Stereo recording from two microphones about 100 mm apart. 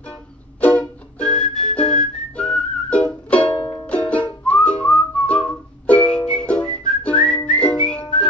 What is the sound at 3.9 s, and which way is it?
Whistling, 15° left (ahead or behind).